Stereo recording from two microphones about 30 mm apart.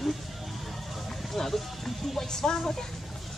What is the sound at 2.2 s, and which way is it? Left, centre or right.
Speech, centre.